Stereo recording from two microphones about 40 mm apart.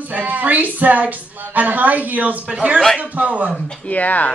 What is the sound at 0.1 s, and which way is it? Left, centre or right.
A woman's voice, right.